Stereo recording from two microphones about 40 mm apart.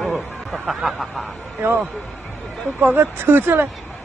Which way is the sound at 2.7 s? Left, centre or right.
Right.